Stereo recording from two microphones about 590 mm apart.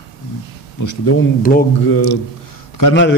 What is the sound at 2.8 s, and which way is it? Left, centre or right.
Speech, left.